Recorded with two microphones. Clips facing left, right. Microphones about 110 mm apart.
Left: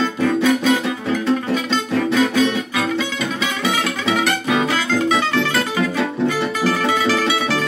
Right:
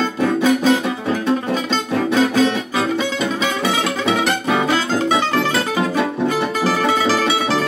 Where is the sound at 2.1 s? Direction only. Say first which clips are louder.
Right 2 dB; 35° right (ahead or behind).